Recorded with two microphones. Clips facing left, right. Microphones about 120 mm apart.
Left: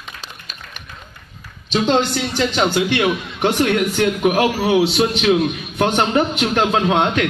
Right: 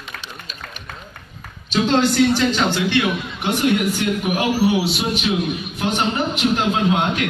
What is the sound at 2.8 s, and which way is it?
A man's voice, 55° left (ahead or behind).